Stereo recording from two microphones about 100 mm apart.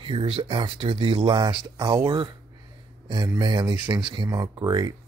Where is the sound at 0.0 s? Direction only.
60° right (ahead or behind).